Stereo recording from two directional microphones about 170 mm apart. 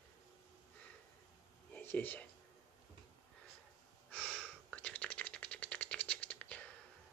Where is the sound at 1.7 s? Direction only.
10° left (ahead or behind).